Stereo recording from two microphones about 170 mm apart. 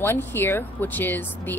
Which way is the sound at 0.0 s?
15° left (ahead or behind).